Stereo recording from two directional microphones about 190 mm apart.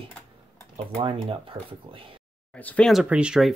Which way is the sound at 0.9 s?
30° right (ahead or behind).